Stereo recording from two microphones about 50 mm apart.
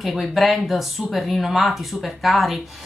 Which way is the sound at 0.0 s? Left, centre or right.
Centre.